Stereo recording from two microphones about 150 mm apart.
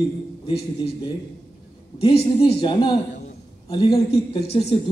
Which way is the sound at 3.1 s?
50° left (ahead or behind).